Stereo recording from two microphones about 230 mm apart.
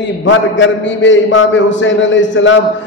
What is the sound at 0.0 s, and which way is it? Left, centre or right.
A man's voice, left.